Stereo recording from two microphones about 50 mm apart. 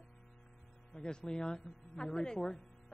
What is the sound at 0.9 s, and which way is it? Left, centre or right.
A woman's voice, centre.